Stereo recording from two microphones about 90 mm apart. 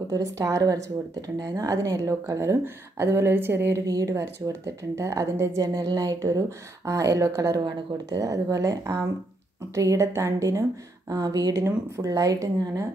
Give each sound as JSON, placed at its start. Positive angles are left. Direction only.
{"t": 0.1, "sound": "speech", "side_deg": -40}
{"t": 3.8, "sound": "speech", "side_deg": -40}
{"t": 5.8, "sound": "a woman's voice", "side_deg": -45}